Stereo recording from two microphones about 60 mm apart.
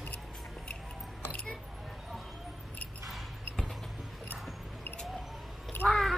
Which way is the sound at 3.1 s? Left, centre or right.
Centre.